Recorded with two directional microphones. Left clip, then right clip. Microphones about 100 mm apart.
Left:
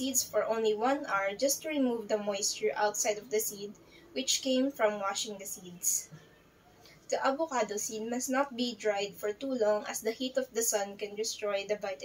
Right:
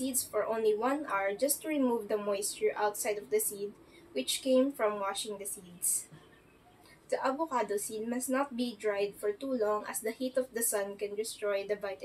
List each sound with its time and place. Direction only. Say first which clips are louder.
0.0 s a woman's voice: left 2 dB; 25° right (ahead or behind)
7.1 s a woman's voice: left 2 dB; 30° right (ahead or behind)